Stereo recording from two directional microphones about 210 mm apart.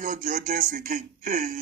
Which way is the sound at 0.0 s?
40° right (ahead or behind).